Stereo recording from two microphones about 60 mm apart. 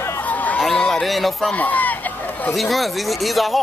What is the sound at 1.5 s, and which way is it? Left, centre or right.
Speech, left.